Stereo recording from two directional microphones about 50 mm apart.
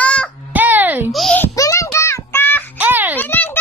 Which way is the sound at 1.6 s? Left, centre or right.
Left.